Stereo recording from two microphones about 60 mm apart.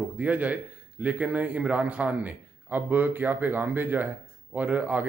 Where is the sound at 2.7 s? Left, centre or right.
Right.